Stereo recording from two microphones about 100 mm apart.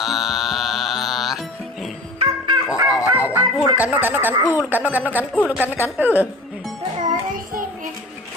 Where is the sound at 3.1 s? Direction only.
15° right (ahead or behind).